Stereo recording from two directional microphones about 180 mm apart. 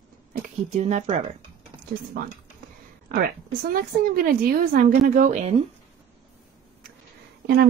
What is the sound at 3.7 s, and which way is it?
A woman's voice, 55° right (ahead or behind).